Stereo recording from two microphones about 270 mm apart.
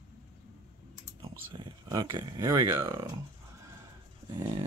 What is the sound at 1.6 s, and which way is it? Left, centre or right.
Speech, centre.